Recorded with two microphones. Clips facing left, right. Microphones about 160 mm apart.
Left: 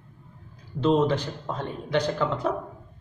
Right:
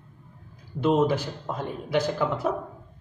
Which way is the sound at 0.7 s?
10° right (ahead or behind).